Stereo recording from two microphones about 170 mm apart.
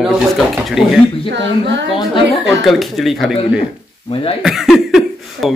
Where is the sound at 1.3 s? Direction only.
90° right.